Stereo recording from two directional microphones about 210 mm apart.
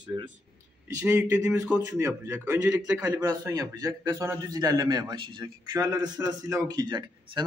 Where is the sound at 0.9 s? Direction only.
10° right (ahead or behind).